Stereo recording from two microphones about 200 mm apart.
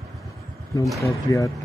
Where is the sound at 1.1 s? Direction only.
15° left (ahead or behind).